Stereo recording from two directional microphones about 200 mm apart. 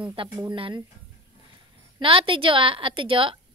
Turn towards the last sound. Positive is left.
turn(degrees=-25)  # may be behind; listen again after turning